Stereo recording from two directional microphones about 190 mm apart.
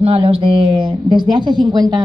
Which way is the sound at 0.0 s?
30° right (ahead or behind).